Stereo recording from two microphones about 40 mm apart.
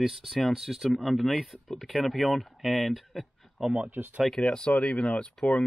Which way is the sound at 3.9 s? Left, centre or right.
Right.